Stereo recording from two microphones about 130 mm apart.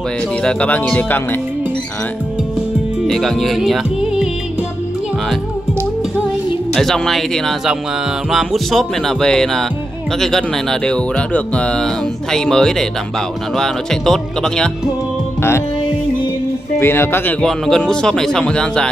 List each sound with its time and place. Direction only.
0.4 s speech: 10° left (ahead or behind)
3.0 s speech: centre (ahead or behind)
6.7 s speech: centre (ahead or behind)
16.7 s speech: 20° left (ahead or behind)
17.4 s speech: centre (ahead or behind)